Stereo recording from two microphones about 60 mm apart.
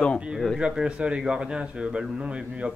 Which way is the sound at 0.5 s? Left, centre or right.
Centre.